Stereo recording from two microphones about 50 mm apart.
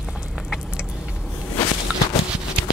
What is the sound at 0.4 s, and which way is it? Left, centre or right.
Vehicle, centre.